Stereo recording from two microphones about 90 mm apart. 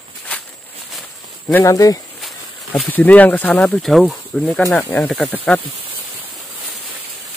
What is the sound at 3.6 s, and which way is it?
Speech, 5° left (ahead or behind).